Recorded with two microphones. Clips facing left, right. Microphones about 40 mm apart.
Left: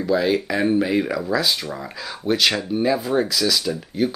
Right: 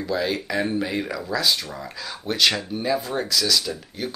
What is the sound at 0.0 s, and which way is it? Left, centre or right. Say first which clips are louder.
Speech: left 5 dB; centre.